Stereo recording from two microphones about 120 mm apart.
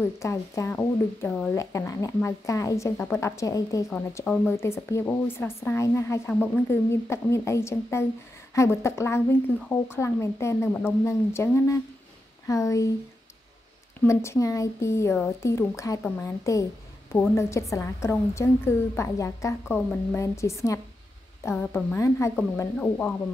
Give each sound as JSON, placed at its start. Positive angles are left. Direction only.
{"t": 0.2, "sound": "speech", "side_deg": 25}
{"t": 14.0, "sound": "speech", "side_deg": 25}
{"t": 19.7, "sound": "speech", "side_deg": 10}
{"t": 20.2, "sound": "speech", "side_deg": 25}
{"t": 22.8, "sound": "speech", "side_deg": 10}